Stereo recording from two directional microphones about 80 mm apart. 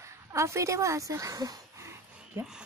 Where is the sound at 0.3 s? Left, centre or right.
Right.